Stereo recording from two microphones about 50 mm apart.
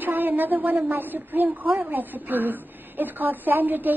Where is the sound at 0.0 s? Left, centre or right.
Right.